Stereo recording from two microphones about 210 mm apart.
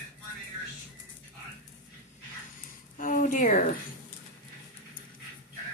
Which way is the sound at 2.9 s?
40° left (ahead or behind).